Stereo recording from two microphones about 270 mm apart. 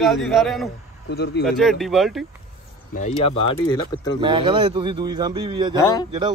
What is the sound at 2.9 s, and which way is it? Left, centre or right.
Speech, left.